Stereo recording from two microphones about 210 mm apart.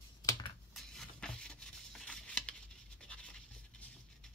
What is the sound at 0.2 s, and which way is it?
Computer keyboard, 15° left (ahead or behind).